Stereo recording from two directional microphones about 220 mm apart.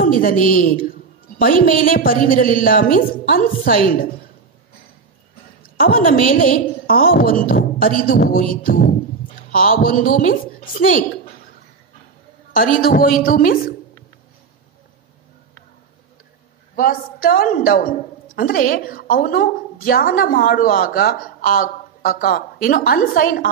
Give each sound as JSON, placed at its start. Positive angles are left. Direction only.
{"t": 0.0, "sound": "a woman's voice", "side_deg": 40}
{"t": 1.8, "sound": "a woman's voice", "side_deg": 40}
{"t": 5.6, "sound": "a woman's voice", "side_deg": 40}
{"t": 12.5, "sound": "a woman's voice", "side_deg": 40}
{"t": 16.7, "sound": "a woman's voice", "side_deg": 40}